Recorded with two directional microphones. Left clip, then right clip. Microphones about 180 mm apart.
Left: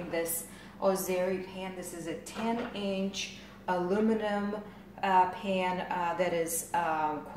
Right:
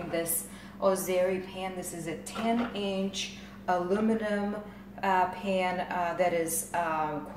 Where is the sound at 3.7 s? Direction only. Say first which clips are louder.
Right 1 dB; 20° left (ahead or behind).